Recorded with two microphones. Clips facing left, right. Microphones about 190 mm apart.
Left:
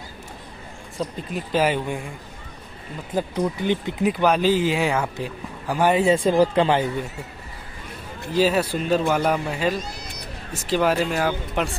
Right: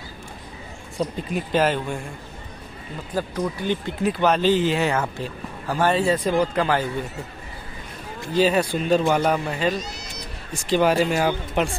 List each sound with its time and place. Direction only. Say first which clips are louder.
0.9 s speech: right 3 dB; 5° left (ahead or behind)
3.2 s speech: left 2 dB; 20° left (ahead or behind)
8.4 s speech: even; 5° left (ahead or behind)
9.8 s cat: even; 55° left (ahead or behind)
10.5 s speech: right 2 dB; centre (ahead or behind)